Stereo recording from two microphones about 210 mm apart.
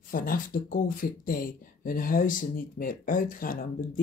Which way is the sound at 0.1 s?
40° left (ahead or behind).